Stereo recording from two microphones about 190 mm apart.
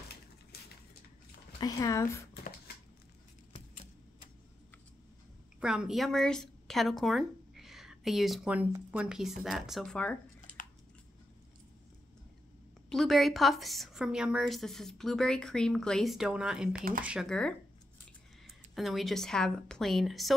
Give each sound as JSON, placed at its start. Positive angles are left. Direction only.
{"t": 1.6, "sound": "speech", "side_deg": 20}
{"t": 5.6, "sound": "a woman's voice", "side_deg": -5}
{"t": 12.9, "sound": "a woman's voice", "side_deg": 0}
{"t": 18.8, "sound": "a woman's voice", "side_deg": 0}